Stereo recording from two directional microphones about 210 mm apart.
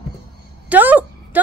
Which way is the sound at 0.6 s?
10° right (ahead or behind).